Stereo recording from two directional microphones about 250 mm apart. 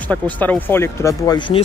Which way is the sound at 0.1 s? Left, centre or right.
Centre.